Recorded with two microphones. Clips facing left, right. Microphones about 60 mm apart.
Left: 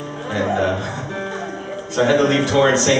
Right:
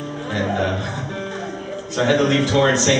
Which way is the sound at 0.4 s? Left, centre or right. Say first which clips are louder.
Left 3 dB; centre.